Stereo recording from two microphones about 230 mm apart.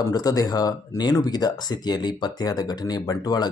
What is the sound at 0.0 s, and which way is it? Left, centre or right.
Speech, centre.